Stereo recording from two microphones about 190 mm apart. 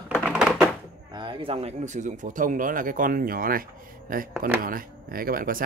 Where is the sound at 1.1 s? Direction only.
25° right (ahead or behind); by 3.6 s 50° right (ahead or behind).